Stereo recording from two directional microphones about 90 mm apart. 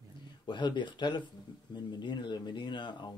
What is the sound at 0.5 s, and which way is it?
Speech, 60° left (ahead or behind).